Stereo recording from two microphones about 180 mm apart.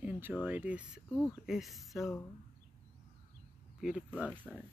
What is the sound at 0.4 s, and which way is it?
Speech, 10° right (ahead or behind).